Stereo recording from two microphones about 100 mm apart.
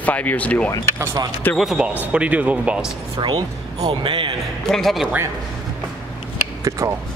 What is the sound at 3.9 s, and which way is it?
Speech, 60° right (ahead or behind).